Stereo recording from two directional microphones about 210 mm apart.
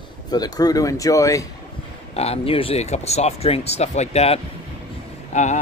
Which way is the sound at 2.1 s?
30° left (ahead or behind).